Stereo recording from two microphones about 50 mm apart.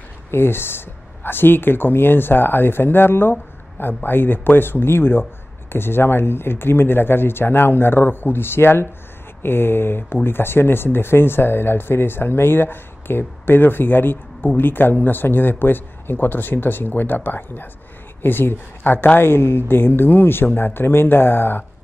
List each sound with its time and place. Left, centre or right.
0.3 s speech: left